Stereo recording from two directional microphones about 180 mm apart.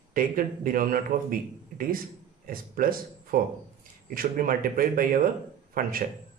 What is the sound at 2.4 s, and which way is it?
Speech, 50° right (ahead or behind).